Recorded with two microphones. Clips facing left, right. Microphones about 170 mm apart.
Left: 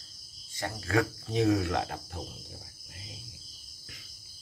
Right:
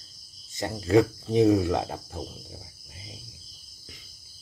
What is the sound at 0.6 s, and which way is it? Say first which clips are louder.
Speech: right 8 dB; 20° right (ahead or behind).